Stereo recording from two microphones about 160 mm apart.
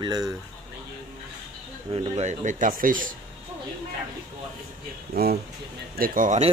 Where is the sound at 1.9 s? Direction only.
45° right (ahead or behind).